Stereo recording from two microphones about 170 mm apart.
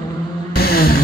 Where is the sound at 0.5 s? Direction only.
65° left (ahead or behind).